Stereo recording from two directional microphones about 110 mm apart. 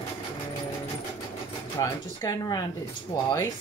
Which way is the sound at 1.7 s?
30° left (ahead or behind).